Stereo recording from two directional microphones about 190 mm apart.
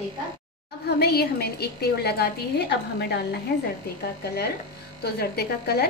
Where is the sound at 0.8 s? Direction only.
60° left (ahead or behind).